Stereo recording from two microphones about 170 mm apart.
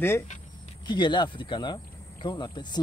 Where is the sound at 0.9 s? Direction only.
25° left (ahead or behind).